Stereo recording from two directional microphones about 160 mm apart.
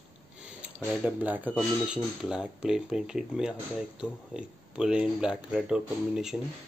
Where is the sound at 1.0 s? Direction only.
10° right (ahead or behind).